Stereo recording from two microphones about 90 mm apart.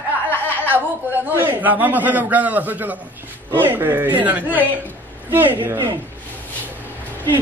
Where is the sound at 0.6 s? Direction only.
20° right (ahead or behind).